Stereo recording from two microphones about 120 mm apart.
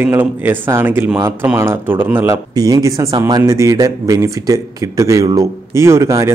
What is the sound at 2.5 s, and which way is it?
A man's voice, 30° right (ahead or behind).